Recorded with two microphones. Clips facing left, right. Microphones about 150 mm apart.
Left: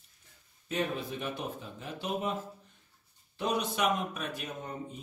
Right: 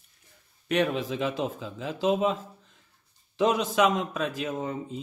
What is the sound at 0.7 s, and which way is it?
A man's voice, 85° right.